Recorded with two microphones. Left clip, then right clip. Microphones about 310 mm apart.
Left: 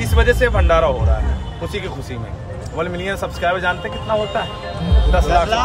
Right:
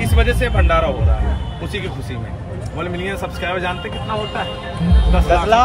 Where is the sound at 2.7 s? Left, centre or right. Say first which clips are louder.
Left 2 dB; centre.